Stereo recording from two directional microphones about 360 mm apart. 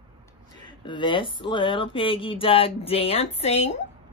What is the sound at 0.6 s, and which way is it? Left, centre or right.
Speech, centre.